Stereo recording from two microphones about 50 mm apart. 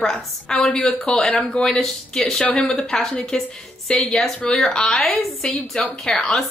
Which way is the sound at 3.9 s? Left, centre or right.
Left.